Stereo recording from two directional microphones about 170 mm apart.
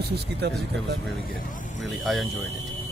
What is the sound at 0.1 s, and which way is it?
Speech, 75° right (ahead or behind).